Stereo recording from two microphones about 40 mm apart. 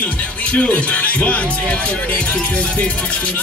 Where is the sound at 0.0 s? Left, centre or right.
Left.